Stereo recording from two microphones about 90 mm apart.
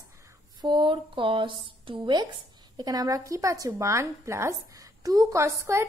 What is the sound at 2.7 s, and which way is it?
A woman's voice, 45° right (ahead or behind).